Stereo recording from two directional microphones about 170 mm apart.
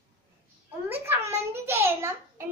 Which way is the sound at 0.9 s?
15° right (ahead or behind).